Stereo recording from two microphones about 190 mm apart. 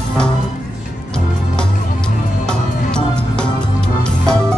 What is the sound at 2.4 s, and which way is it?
Music, 5° left (ahead or behind).